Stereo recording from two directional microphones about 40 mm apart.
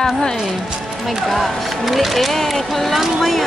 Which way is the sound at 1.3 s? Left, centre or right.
Centre.